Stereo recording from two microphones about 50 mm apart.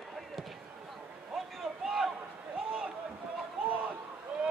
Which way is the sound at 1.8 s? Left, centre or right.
Centre.